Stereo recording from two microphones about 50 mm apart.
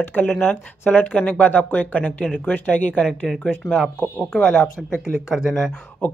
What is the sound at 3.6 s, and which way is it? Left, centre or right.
Speech, left.